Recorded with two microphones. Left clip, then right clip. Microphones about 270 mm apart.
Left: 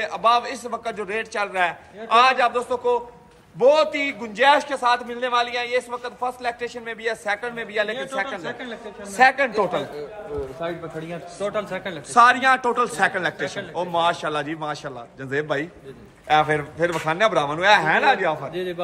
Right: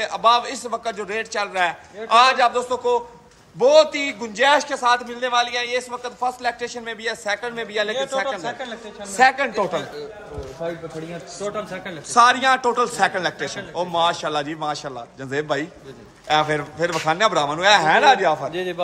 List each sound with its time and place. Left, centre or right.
0.0 s a man's voice: centre
7.9 s speech: centre
8.2 s a man's voice: centre
11.4 s a man's voice: centre
18.5 s speech: right